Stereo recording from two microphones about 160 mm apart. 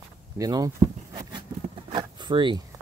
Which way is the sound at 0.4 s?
20° right (ahead or behind).